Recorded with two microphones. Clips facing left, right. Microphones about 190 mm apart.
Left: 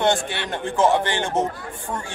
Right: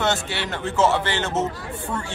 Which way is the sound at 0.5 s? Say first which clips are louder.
Left 1 dB; 15° left (ahead or behind).